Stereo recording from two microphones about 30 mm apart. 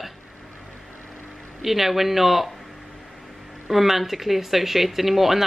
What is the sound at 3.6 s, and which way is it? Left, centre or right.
Speech, centre.